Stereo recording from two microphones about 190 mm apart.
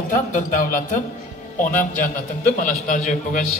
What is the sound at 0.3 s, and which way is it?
A man's voice, 45° left (ahead or behind).